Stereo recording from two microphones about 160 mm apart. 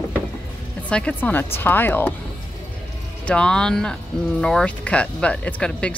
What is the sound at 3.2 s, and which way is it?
Speech, 5° left (ahead or behind).